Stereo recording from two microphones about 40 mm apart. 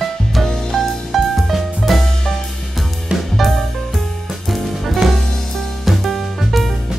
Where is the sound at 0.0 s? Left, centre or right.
Centre.